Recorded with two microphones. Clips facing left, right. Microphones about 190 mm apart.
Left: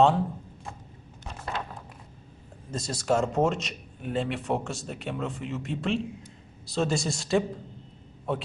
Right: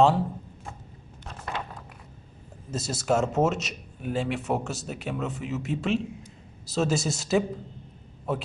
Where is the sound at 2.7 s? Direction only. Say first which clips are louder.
Right 1 dB; 5° right (ahead or behind).